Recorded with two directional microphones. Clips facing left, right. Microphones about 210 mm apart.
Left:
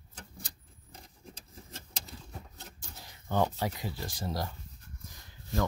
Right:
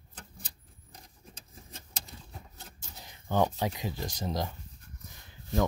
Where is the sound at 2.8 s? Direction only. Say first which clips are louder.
Even; 15° right (ahead or behind).